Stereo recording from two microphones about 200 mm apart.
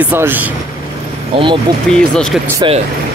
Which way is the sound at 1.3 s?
30° right (ahead or behind).